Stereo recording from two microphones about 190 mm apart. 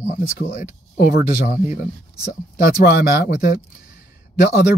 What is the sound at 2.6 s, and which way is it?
Speech, 50° left (ahead or behind).